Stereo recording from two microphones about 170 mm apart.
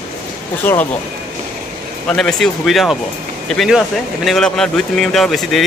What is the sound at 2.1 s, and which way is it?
Speech, 5° left (ahead or behind).